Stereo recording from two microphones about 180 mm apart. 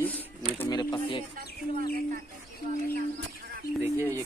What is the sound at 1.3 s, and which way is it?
Speech, 55° right (ahead or behind).